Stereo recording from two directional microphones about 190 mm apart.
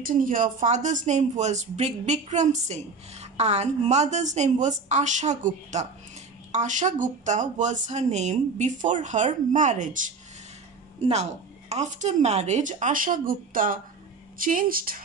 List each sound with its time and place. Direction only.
0.0 s speech: 45° right (ahead or behind)
11.7 s a woman's voice: 40° right (ahead or behind)